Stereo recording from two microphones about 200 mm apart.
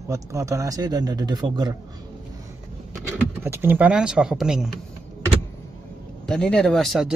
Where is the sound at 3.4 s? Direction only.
10° right (ahead or behind).